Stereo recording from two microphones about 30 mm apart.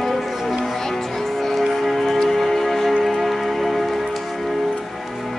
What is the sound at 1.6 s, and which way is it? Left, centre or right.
Music, centre.